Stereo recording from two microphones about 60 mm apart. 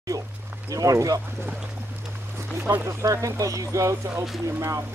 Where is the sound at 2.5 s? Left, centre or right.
Right.